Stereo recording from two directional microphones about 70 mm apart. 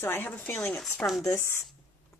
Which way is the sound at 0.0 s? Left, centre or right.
Left.